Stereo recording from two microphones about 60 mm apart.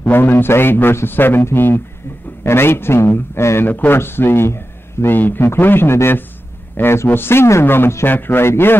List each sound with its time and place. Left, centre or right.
0.0 s a man's voice: left
3.6 s a man's voice: left